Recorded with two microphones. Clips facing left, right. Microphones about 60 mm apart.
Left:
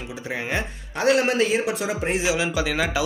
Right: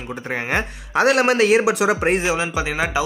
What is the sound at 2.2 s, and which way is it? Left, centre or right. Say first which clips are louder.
Speech: right 2 dB; right.